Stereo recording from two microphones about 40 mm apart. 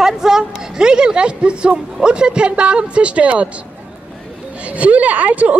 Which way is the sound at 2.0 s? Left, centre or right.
Right.